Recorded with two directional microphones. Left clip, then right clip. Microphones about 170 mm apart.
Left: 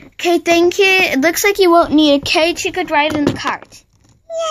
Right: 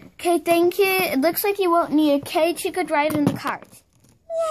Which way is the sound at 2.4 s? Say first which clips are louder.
Left 6 dB; 5° right (ahead or behind).